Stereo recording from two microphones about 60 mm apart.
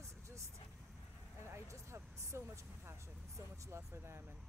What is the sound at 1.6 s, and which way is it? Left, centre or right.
Speech, right.